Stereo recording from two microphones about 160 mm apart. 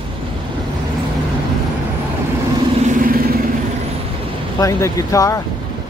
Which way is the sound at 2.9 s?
60° right (ahead or behind).